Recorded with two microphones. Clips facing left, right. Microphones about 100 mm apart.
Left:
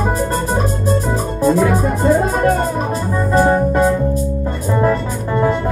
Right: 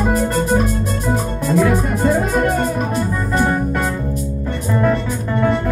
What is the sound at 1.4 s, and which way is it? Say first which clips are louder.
Music: left 3 dB; 35° left (ahead or behind).